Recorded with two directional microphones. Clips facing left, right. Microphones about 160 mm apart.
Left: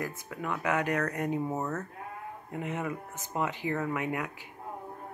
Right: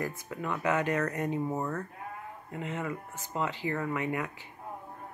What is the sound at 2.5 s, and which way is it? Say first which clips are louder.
Speech: left 1 dB; 15° left (ahead or behind).